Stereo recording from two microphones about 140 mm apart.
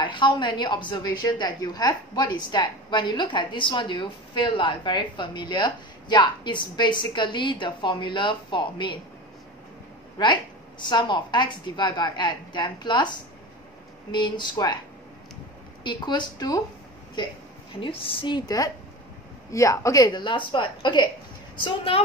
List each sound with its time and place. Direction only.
0.0 s a woman's voice: 35° left (ahead or behind)
10.1 s a woman's voice: 35° left (ahead or behind)
14.1 s a woman's voice: 30° left (ahead or behind)
15.8 s a woman's voice: 35° left (ahead or behind)